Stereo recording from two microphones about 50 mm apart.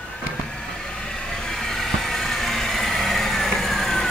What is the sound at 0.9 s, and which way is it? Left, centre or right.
Vehicle, centre.